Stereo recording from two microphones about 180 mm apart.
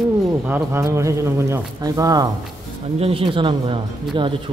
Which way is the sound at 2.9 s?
30° right (ahead or behind).